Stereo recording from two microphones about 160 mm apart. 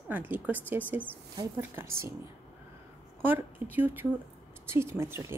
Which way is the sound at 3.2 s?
10° right (ahead or behind).